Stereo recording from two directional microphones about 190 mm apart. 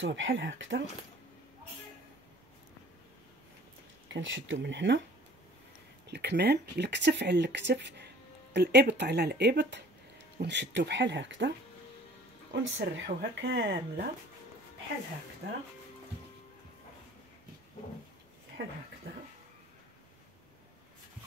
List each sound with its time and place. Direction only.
0.0 s speech: 85° right
4.1 s speech: 80° right
6.0 s speech: 60° right (ahead or behind)
12.5 s speech: 75° right (ahead or behind)
18.6 s speech: 60° right (ahead or behind)